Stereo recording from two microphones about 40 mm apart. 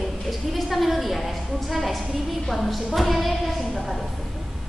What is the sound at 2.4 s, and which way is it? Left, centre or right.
A woman's voice, centre.